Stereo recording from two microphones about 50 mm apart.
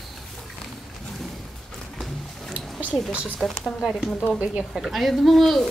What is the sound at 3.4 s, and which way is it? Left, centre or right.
Speech, centre.